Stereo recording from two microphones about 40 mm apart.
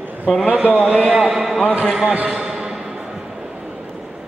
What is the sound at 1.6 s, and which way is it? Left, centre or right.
Speech, right.